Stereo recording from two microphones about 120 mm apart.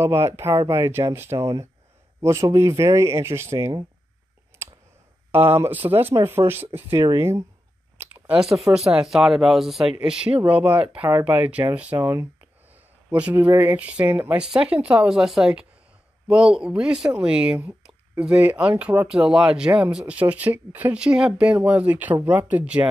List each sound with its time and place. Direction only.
0.0 s speech: 20° right (ahead or behind)
5.3 s speech: 20° right (ahead or behind)
12.7 s a sound: 15° right (ahead or behind)
13.6 s speech: 15° right (ahead or behind)